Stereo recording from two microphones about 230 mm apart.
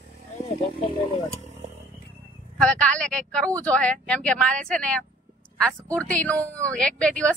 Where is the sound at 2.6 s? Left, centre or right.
Centre.